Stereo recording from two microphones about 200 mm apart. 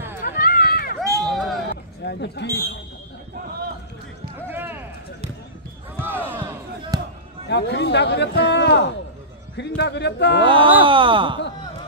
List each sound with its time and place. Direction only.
0.2 s run: 45° left (ahead or behind)
1.2 s a sound: centre (ahead or behind)
2.0 s speech: 55° left (ahead or behind)
4.5 s run: 10° right (ahead or behind)
5.9 s basketball bounce: 10° right (ahead or behind)
7.4 s speech: 60° left (ahead or behind)
10.4 s speech: 25° right (ahead or behind)